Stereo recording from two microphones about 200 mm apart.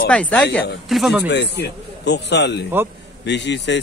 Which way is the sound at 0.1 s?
5° left (ahead or behind).